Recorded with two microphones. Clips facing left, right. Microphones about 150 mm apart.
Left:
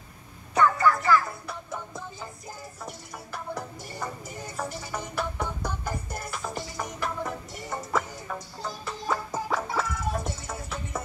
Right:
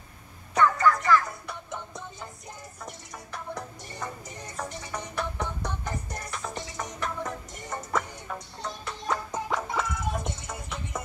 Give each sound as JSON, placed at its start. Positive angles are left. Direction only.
{"t": 0.6, "sound": "music", "side_deg": 5}